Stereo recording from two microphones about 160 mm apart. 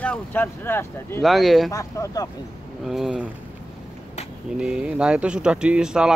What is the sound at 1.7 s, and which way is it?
Speech, 20° left (ahead or behind).